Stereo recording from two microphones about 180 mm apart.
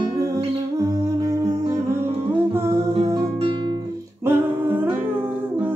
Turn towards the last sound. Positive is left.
turn(degrees=-10)  # may be behind; listen again after turning